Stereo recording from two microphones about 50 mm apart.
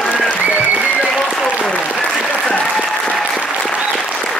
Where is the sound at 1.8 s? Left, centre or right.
Left.